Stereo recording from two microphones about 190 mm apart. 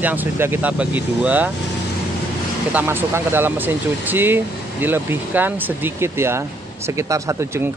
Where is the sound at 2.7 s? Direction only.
10° right (ahead or behind).